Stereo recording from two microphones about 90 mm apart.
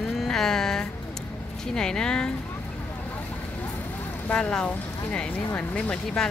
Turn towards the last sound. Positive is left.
turn(degrees=10)  # may be behind; listen again after turning